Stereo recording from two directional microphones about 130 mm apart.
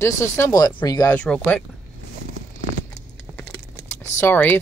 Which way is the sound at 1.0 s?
5° left (ahead or behind).